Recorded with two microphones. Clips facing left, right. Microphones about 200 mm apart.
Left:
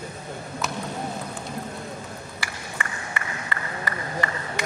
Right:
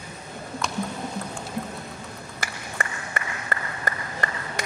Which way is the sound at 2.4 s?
45° right (ahead or behind).